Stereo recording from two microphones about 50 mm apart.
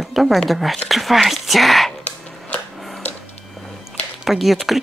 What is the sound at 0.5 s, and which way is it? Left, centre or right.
Speech, centre.